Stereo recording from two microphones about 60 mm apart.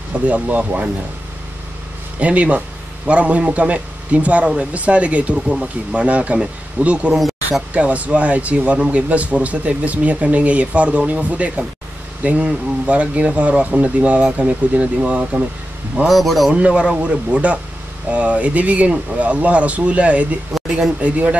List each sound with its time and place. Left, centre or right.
0.1 s a man's voice: right
2.1 s a man's voice: right
7.2 s a sound: centre
7.7 s a man's voice: right
16.1 s speech: centre
16.5 s a man's voice: right